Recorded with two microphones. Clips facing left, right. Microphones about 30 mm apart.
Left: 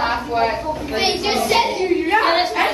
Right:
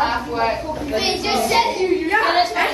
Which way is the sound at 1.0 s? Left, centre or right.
Left.